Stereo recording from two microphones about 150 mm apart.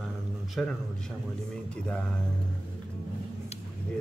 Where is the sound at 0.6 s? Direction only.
5° left (ahead or behind).